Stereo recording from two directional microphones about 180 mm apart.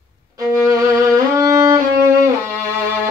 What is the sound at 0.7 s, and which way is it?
Violin, 20° right (ahead or behind).